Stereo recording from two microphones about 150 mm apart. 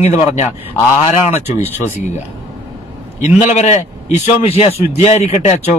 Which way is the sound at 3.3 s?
50° left (ahead or behind).